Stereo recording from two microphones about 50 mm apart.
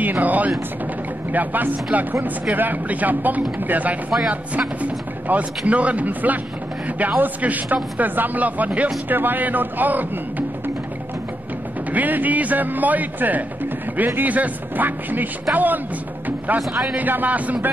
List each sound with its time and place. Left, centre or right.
0.0 s speech: right
11.9 s speech: right
16.3 s music: right
16.9 s speech: right